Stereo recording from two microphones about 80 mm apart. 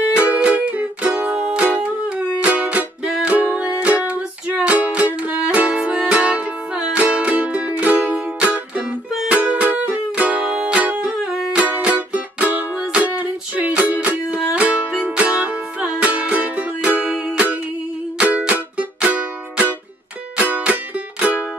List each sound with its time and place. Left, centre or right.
0.3 s music: centre